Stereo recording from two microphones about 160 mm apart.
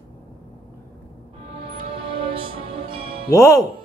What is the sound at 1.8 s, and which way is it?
Music, 35° right (ahead or behind).